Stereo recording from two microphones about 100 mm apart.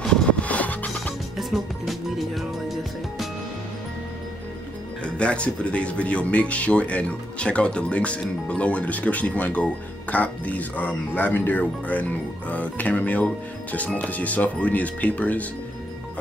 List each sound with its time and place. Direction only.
0.0 s music: 10° left (ahead or behind)
1.3 s music: centre (ahead or behind)
5.0 s speech: 10° left (ahead or behind)